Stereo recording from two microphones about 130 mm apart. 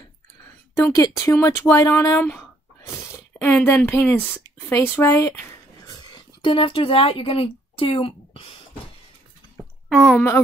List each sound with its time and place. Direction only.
0.7 s speech: 25° left (ahead or behind)
6.4 s speech: 40° left (ahead or behind)
9.8 s speech: centre (ahead or behind)